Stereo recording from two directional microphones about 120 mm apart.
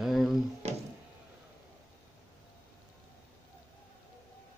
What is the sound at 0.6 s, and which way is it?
Music, 65° right (ahead or behind).